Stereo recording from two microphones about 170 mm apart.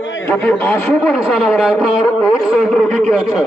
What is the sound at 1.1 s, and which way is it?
A man's voice, centre (ahead or behind).